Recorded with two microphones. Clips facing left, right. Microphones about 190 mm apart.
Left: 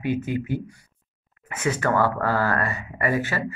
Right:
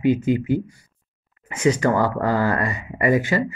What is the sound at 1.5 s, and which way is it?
Speech, 15° right (ahead or behind).